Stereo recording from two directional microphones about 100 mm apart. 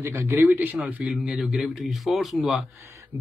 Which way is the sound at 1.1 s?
5° right (ahead or behind).